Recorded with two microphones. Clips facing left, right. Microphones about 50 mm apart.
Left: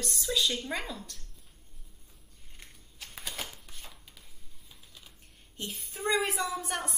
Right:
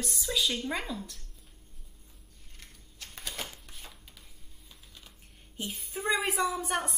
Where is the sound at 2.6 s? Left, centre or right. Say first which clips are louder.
Left 1 dB; centre.